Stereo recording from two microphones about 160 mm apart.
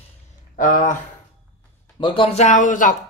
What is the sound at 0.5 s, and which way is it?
Speech, 55° left (ahead or behind).